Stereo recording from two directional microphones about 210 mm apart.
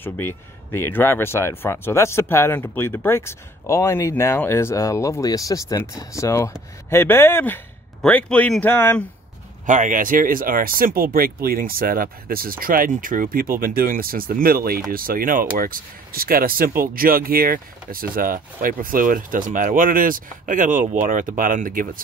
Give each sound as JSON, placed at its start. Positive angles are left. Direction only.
{"t": 0.0, "sound": "speech", "side_deg": 10}
{"t": 9.7, "sound": "speech", "side_deg": -40}